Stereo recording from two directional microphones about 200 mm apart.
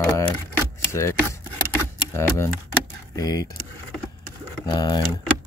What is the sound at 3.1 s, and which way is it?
Speech, 20° left (ahead or behind).